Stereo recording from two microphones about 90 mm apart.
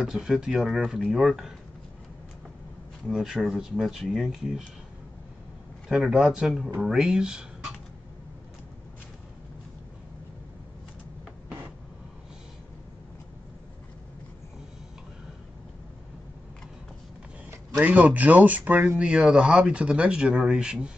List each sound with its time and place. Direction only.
0.0 s speech: 5° right (ahead or behind)
3.1 s speech: centre (ahead or behind)
5.9 s speech: 5° right (ahead or behind)
17.7 s speech: 15° right (ahead or behind)
18.9 s speech: 10° right (ahead or behind)